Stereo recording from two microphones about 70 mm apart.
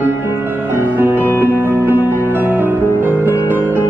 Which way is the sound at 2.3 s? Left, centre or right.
Right.